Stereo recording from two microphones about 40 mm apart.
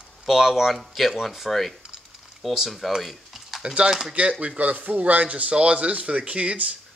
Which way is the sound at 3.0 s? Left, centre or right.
Centre.